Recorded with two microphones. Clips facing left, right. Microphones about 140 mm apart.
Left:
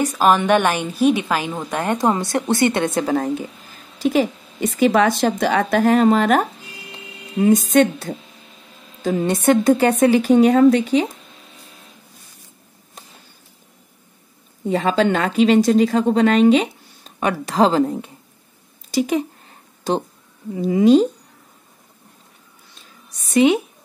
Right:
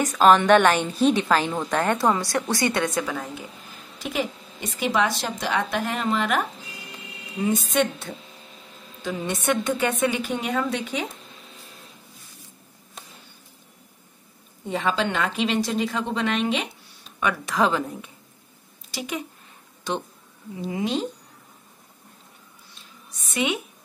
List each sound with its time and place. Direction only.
0.0 s a woman's voice: 10° left (ahead or behind); by 3.2 s 30° left (ahead or behind)
4.0 s a woman's voice: 40° left (ahead or behind)
14.7 s a woman's voice: 45° left (ahead or behind)
20.5 s a woman's voice: 40° left (ahead or behind)
23.2 s a woman's voice: 35° left (ahead or behind)